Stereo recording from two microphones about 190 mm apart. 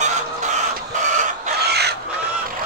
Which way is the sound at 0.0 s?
40° right (ahead or behind).